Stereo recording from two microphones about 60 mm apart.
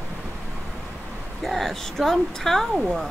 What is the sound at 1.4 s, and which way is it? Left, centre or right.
Speech, centre.